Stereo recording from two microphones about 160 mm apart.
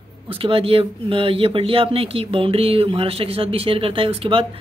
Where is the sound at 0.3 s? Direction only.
35° right (ahead or behind).